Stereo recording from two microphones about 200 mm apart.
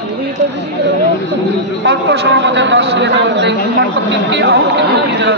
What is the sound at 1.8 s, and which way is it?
A man's voice, 60° right (ahead or behind).